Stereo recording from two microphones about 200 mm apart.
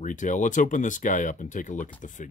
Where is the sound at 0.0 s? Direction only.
40° left (ahead or behind).